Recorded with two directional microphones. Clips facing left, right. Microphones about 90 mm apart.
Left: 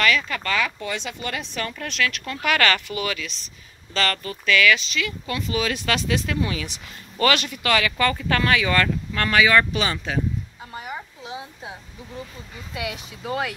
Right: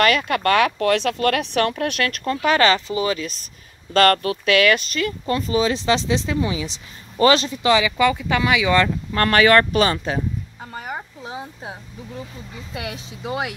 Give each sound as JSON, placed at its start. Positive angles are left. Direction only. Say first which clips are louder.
{"t": 0.0, "sound": "speech", "louder": "right 5 dB", "side_deg": -50}
{"t": 3.9, "sound": "speech", "louder": "right 9 dB", "side_deg": -50}
{"t": 9.1, "sound": "speech", "louder": "right 4 dB", "side_deg": -45}
{"t": 12.7, "sound": "speech", "louder": "even", "side_deg": -30}
{"t": 13.2, "sound": "speech", "louder": "right 1 dB", "side_deg": -15}